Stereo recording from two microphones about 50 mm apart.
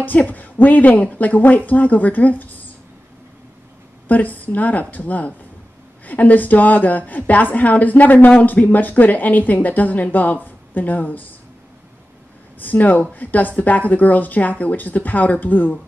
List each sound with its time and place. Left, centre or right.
0.0 s speech: left
4.1 s speech: left
12.5 s speech: left